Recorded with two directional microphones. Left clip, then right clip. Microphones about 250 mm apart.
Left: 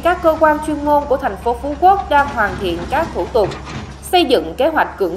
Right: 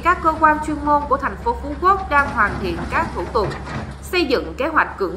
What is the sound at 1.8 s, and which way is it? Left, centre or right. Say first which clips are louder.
A woman's voice: left 4 dB; centre.